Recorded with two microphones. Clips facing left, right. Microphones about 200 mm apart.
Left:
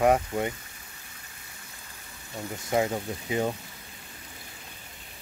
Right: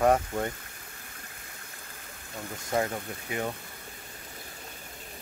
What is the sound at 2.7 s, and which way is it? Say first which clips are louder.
Speech: left 3 dB; 15° left (ahead or behind).